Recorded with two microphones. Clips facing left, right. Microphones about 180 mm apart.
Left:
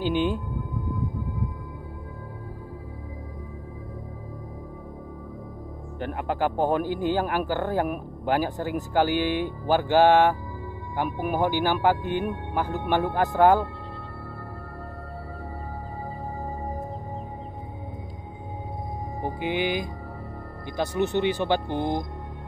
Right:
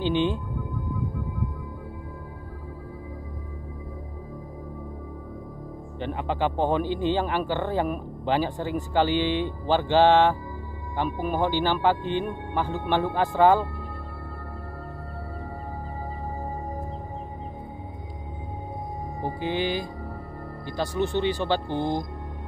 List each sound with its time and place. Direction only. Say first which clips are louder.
5.9 s speech: even; 5° left (ahead or behind)
19.2 s speech: even; 15° left (ahead or behind)